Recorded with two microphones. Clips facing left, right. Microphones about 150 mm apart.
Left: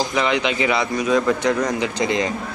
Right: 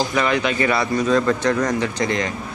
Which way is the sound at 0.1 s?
15° left (ahead or behind).